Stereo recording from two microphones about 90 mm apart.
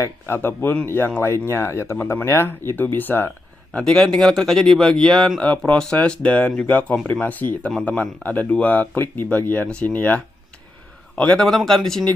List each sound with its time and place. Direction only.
0.0 s speech: 25° left (ahead or behind)
3.7 s speech: 5° left (ahead or behind)
11.4 s speech: centre (ahead or behind)